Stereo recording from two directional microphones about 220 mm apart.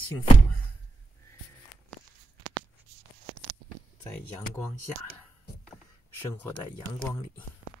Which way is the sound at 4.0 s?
10° left (ahead or behind).